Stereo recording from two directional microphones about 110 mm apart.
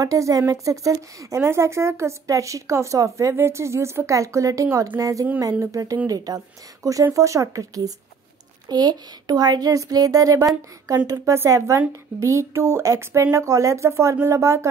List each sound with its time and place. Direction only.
0.0 s speech: 30° right (ahead or behind)